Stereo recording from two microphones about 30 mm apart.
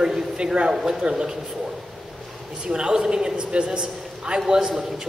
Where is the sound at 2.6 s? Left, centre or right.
Right.